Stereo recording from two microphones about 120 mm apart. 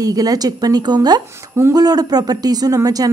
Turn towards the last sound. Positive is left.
turn(degrees=-30)  # may be behind; listen again after turning